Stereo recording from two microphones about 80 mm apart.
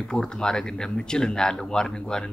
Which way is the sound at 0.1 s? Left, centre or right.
Centre.